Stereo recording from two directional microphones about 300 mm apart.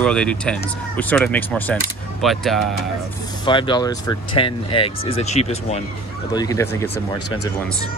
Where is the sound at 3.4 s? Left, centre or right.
Centre.